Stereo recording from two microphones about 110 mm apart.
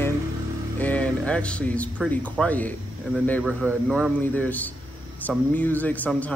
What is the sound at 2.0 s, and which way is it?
Speech, 10° left (ahead or behind).